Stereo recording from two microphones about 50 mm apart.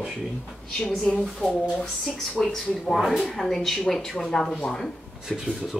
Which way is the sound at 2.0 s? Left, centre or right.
Centre.